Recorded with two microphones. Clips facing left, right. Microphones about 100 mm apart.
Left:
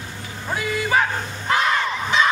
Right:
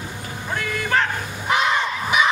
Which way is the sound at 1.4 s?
15° right (ahead or behind).